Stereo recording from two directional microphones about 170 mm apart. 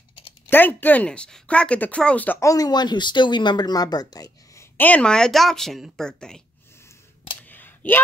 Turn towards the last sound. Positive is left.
turn(degrees=10)  # may be behind; listen again after turning